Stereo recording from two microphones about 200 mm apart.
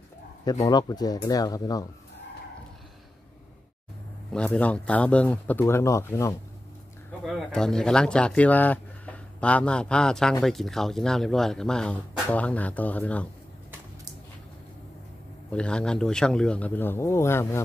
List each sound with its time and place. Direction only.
0.7 s speech: 20° left (ahead or behind)
4.3 s speech: 5° left (ahead or behind)
7.2 s speech: 5° left (ahead or behind)
15.5 s speech: 5° left (ahead or behind)